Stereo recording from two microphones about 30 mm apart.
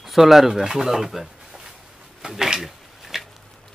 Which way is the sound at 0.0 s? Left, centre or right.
Centre.